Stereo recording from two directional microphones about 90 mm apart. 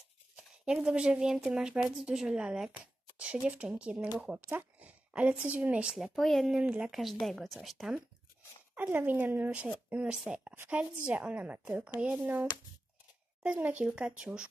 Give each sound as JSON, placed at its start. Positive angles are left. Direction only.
{"t": 0.4, "sound": "speech", "side_deg": -5}
{"t": 2.8, "sound": "a sound", "side_deg": -10}
{"t": 3.4, "sound": "speech", "side_deg": -10}
{"t": 6.5, "sound": "speech", "side_deg": -10}
{"t": 8.7, "sound": "speech", "side_deg": -20}